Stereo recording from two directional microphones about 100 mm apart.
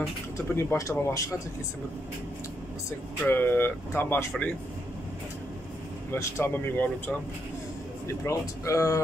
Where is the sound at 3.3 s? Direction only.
20° left (ahead or behind).